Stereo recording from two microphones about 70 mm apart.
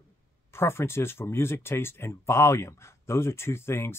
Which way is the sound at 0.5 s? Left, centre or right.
Left.